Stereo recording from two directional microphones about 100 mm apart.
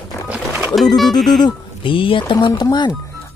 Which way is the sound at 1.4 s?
60° left (ahead or behind).